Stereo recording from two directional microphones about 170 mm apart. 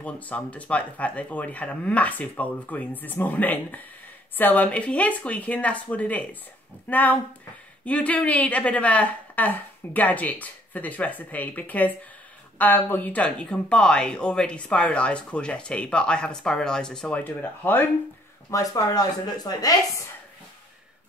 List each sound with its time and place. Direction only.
0.0 s speech: 10° left (ahead or behind)